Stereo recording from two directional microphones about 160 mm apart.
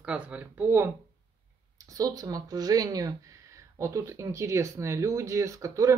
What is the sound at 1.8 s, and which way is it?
Speech, 20° right (ahead or behind).